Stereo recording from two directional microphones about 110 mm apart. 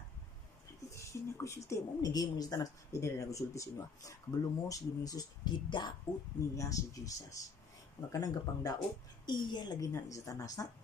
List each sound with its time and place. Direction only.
0.9 s a woman's voice: 25° left (ahead or behind); by 5.9 s 45° left (ahead or behind)
6.5 s a woman's voice: 30° left (ahead or behind)
9.9 s a woman's voice: 30° left (ahead or behind)